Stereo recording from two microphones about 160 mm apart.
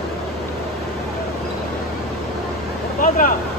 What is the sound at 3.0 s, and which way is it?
Speech, 55° left (ahead or behind).